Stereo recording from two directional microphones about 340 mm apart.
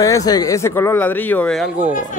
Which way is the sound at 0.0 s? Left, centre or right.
Centre.